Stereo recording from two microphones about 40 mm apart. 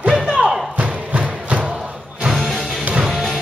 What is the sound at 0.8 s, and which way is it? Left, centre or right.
Music, right.